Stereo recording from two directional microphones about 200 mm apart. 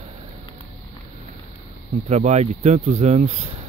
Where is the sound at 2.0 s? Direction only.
35° right (ahead or behind).